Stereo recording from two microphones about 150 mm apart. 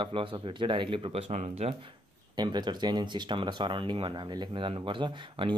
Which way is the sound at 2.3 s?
30° right (ahead or behind).